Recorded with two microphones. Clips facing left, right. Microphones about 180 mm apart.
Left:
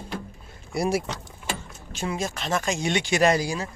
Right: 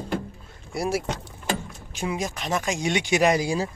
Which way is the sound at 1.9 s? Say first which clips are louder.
Right 1 dB; 15° right (ahead or behind).